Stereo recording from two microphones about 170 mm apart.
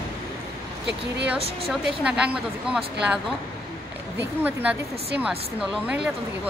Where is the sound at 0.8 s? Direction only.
85° right.